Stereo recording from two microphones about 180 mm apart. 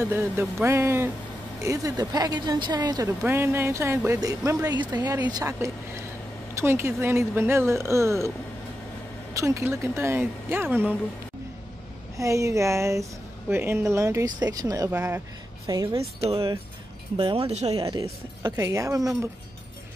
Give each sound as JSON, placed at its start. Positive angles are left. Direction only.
{"t": 0.0, "sound": "a woman's voice", "side_deg": -15}
{"t": 3.3, "sound": "a woman's voice", "side_deg": -10}
{"t": 9.3, "sound": "speech", "side_deg": -15}
{"t": 12.2, "sound": "a woman's voice", "side_deg": -15}
{"t": 17.7, "sound": "a woman's voice", "side_deg": -20}